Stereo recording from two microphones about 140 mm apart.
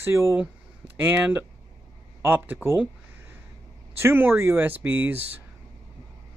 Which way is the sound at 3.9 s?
15° right (ahead or behind).